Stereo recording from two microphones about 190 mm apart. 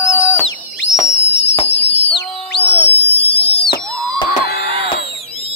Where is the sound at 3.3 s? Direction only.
30° left (ahead or behind).